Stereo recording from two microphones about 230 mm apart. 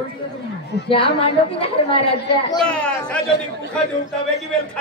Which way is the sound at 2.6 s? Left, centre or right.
Centre.